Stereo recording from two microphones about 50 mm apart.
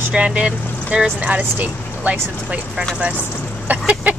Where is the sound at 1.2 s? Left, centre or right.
Right.